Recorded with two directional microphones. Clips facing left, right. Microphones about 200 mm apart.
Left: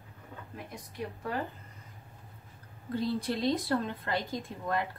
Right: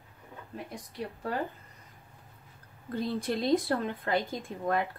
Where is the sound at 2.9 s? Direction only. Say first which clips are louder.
Even; 50° right (ahead or behind).